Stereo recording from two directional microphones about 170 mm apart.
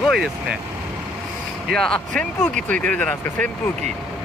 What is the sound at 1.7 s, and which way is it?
Speech, 5° left (ahead or behind).